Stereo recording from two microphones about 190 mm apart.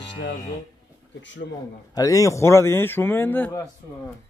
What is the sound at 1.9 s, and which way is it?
Speech, 15° left (ahead or behind).